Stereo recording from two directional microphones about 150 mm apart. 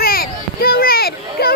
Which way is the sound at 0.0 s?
80° left.